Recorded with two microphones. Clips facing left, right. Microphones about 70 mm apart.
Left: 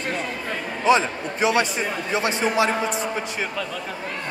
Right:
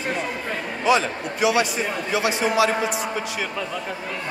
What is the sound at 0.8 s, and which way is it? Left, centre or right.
A man's voice, left.